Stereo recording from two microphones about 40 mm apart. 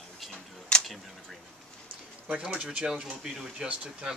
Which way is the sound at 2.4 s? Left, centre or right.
Right.